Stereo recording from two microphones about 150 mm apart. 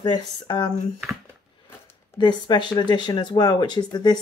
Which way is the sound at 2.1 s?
30° left (ahead or behind).